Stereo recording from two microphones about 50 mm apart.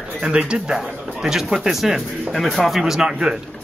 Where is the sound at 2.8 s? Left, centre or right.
Centre.